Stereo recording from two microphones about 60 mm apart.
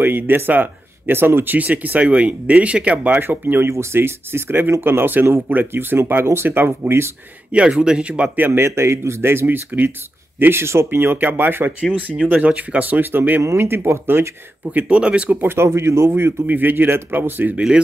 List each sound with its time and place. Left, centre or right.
0.0 s speech: right
7.5 s speech: centre
8.4 s speech: right
12.3 s speech: right
13.4 s speech: right
14.7 s speech: right
15.2 s speech: right
16.4 s speech: right
17.6 s speech: centre